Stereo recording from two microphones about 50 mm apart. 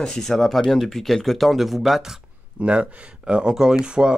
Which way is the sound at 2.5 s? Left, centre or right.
Right.